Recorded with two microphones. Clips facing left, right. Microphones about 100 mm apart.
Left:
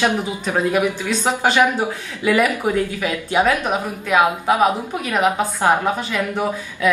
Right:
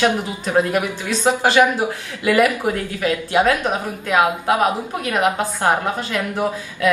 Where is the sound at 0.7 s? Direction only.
10° right (ahead or behind).